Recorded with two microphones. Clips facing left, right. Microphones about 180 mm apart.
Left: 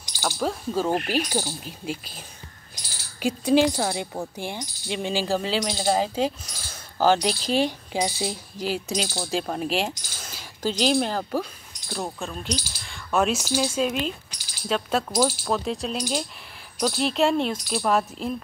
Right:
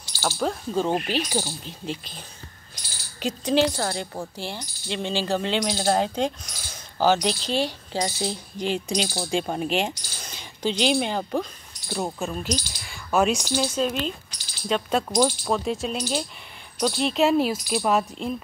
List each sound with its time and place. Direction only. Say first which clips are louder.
0.2 s speech: right 1 dB; 5° left (ahead or behind)
4.8 s speech: even; 5° left (ahead or behind)